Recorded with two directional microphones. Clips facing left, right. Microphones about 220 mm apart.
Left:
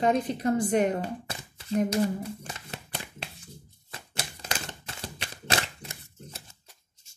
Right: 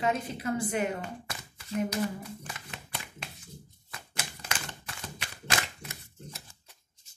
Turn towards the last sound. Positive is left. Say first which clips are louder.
# left 1 dB
turn(degrees=30)  # may be behind; listen again after turning